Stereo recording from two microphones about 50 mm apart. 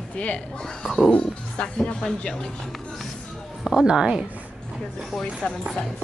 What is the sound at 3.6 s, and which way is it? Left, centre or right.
Speech, centre.